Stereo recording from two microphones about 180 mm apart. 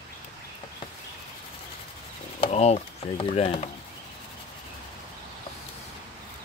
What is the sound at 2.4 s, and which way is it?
Speech, 35° left (ahead or behind).